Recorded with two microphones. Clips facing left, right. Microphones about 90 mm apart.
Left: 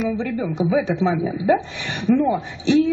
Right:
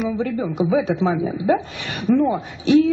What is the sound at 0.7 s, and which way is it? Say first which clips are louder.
A woman's voice: even; 45° right (ahead or behind).